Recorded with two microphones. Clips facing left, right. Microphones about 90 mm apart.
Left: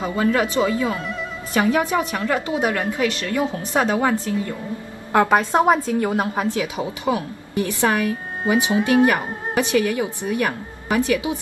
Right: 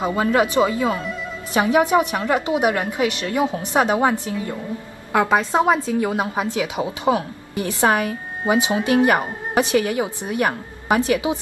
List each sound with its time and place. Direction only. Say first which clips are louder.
0.0 s a woman's voice: right 1 dB; 20° right (ahead or behind)
5.3 s a woman's voice: even; 15° left (ahead or behind)
5.8 s a woman's voice: even; 15° right (ahead or behind)